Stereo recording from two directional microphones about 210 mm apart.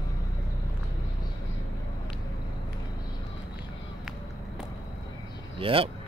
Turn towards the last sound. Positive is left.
turn(degrees=-25)  # may be behind; listen again after turning